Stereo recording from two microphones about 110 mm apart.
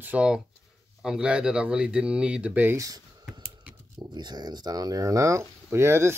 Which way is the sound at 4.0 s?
40° right (ahead or behind).